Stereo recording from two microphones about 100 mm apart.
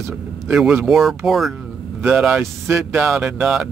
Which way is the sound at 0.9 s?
Centre (ahead or behind).